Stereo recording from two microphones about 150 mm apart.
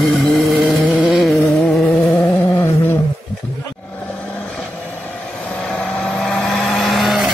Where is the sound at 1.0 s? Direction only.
Centre (ahead or behind).